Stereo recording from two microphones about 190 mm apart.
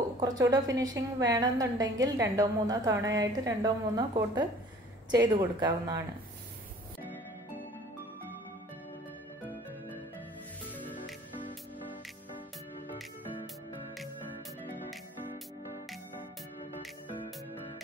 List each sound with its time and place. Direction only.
0.4 s a woman's voice: 20° right (ahead or behind)